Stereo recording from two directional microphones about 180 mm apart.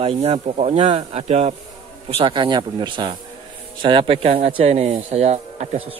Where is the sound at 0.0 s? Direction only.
35° right (ahead or behind).